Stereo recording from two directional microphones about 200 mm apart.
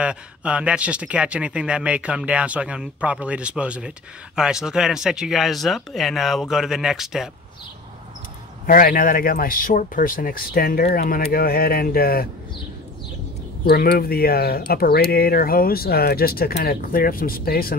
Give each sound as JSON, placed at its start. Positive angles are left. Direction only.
{"t": 0.0, "sound": "speech", "side_deg": -5}
{"t": 8.6, "sound": "speech", "side_deg": 45}
{"t": 13.7, "sound": "speech", "side_deg": 50}